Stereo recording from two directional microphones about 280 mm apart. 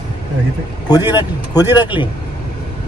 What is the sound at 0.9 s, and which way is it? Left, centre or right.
Speech, centre.